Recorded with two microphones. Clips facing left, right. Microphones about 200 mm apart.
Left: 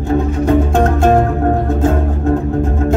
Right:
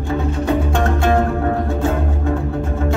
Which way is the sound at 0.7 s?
45° left (ahead or behind).